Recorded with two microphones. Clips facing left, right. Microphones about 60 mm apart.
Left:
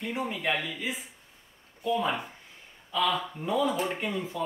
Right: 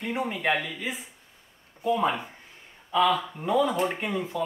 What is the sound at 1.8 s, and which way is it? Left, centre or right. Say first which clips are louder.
Speech: right 3 dB; right.